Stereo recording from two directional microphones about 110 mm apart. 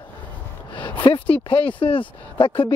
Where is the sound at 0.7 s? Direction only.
45° left (ahead or behind).